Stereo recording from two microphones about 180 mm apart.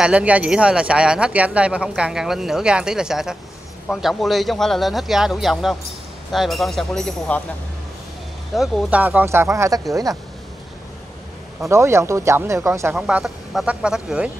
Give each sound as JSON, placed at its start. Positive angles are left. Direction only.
{"t": 0.0, "sound": "speech", "side_deg": -5}
{"t": 8.5, "sound": "speech", "side_deg": -10}
{"t": 11.7, "sound": "speech", "side_deg": -15}
{"t": 12.9, "sound": "speech", "side_deg": 0}